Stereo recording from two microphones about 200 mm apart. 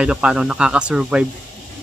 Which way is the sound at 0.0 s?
5° right (ahead or behind).